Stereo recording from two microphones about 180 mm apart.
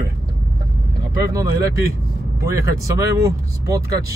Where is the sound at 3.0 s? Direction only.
15° right (ahead or behind).